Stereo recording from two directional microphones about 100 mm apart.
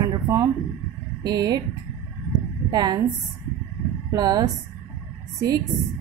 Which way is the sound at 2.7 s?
45° right (ahead or behind).